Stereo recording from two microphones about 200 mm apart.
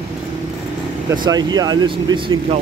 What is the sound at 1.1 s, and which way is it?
Speech, 20° right (ahead or behind).